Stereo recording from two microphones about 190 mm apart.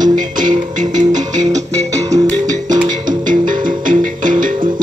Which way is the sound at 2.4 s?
40° right (ahead or behind).